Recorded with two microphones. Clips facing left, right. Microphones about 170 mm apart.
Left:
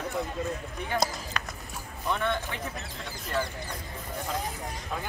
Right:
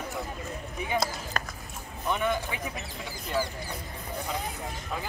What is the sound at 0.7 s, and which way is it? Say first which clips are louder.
Speech: right 4 dB; 5° right (ahead or behind).